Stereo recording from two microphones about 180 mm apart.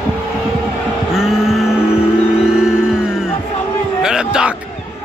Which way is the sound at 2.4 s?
5° right (ahead or behind).